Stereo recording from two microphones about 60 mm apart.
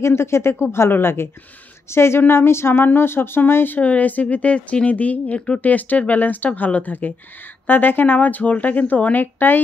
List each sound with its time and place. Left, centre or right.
0.0 s speech: left